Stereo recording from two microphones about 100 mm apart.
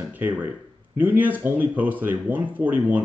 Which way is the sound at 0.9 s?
20° right (ahead or behind).